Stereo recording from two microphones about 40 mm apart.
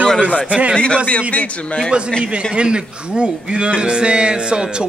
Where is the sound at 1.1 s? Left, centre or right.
Left.